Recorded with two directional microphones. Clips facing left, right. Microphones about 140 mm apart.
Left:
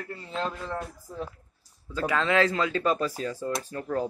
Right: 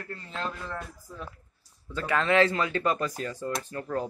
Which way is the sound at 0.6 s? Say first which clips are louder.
Left 4 dB; 25° left (ahead or behind).